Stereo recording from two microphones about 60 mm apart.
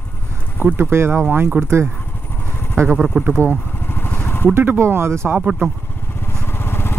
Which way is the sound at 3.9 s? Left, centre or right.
Left.